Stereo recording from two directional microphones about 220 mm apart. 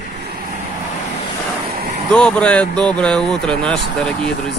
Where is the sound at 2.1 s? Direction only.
5° left (ahead or behind).